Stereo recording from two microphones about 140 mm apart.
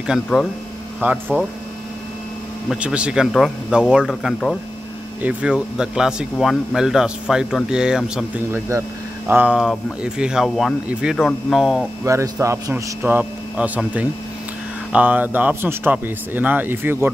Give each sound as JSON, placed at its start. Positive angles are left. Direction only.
{"t": 0.3, "sound": "speech", "side_deg": 0}
{"t": 1.0, "sound": "speech", "side_deg": -15}
{"t": 2.7, "sound": "speech", "side_deg": -10}
{"t": 12.0, "sound": "a man's voice", "side_deg": -20}
{"t": 13.0, "sound": "speech", "side_deg": -10}